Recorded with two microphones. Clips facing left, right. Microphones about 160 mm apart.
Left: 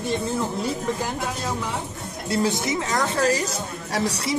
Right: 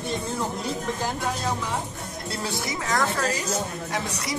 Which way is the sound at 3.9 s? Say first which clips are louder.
Left 8 dB; 35° left (ahead or behind).